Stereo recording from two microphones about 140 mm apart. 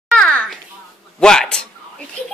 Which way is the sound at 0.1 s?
5° left (ahead or behind).